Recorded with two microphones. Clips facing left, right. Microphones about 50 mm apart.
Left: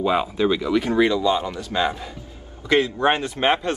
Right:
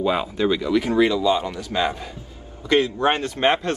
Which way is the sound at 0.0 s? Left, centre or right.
Centre.